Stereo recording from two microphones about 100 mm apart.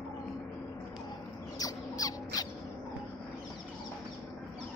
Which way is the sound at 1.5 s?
40° left (ahead or behind).